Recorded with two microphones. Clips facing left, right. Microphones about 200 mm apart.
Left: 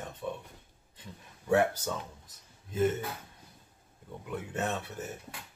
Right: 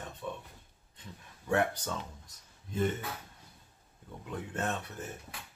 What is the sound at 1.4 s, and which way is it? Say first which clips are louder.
Speech: left 4 dB; 5° left (ahead or behind).